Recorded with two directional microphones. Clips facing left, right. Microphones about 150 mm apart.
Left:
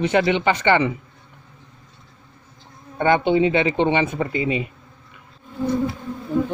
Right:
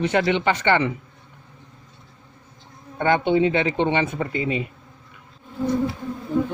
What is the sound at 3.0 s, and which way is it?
Speech, 15° left (ahead or behind).